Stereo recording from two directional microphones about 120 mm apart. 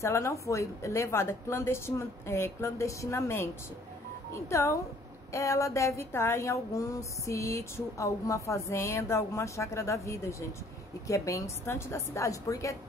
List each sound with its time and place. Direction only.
0.0 s speech: 25° left (ahead or behind)